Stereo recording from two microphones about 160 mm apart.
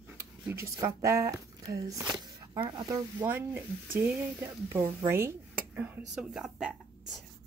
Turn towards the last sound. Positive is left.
turn(degrees=-5)  # may be behind; listen again after turning